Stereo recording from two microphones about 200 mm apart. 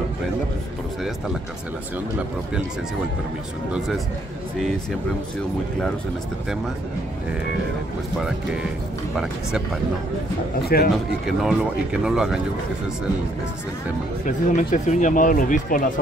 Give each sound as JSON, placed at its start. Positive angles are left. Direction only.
{"t": 9.1, "sound": "speech", "side_deg": -5}
{"t": 10.7, "sound": "a man's voice", "side_deg": 50}
{"t": 11.2, "sound": "speech", "side_deg": -5}
{"t": 14.2, "sound": "speech", "side_deg": 40}